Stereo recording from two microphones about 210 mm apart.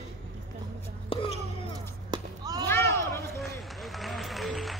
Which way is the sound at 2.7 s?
15° left (ahead or behind).